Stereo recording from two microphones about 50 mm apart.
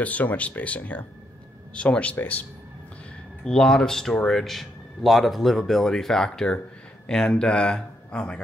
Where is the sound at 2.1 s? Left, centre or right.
Left.